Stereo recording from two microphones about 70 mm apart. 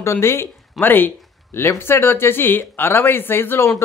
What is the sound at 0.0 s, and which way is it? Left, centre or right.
Speech, left.